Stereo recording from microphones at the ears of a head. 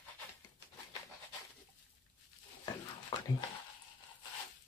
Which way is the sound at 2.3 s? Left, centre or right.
Left.